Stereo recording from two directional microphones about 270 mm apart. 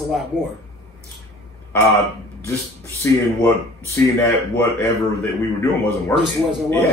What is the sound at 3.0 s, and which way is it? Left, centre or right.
Speech, centre.